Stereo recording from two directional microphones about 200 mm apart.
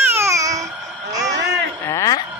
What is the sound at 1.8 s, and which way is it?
Speech, 15° left (ahead or behind).